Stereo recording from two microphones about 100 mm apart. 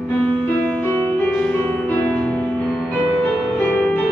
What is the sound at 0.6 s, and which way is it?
Music, 15° left (ahead or behind).